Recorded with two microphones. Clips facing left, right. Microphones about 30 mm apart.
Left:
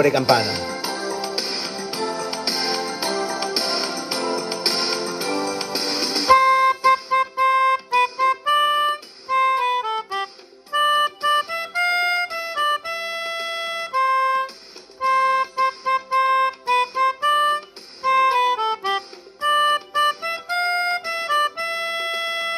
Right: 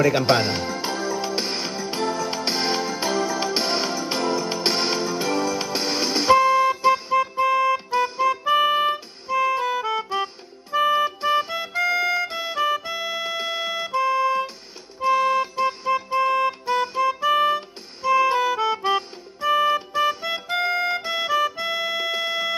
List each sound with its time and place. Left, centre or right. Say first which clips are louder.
0.3 s speech: left 2 dB; left
0.7 s music: even; left
8.6 s music: left 1 dB; left
9.3 s music: left 3 dB; left
10.7 s music: left 1 dB; left
18.3 s music: left 3 dB; left
18.6 s music: right 1 dB; left